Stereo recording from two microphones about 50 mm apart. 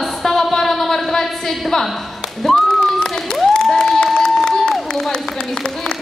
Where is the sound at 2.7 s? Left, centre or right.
Centre.